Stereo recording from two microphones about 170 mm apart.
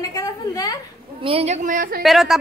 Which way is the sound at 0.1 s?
20° left (ahead or behind).